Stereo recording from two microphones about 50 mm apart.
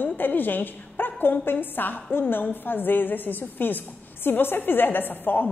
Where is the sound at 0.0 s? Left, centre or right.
Left.